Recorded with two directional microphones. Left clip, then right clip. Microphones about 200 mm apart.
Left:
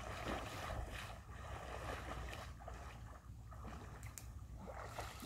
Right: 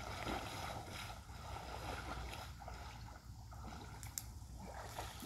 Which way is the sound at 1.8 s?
10° left (ahead or behind).